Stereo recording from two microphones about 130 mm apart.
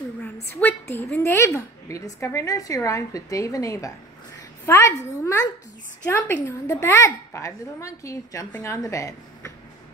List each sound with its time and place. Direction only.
0.4 s a woman's voice: 15° left (ahead or behind)